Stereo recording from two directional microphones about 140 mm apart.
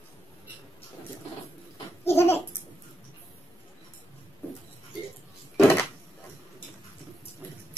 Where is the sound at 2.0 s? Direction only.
15° left (ahead or behind).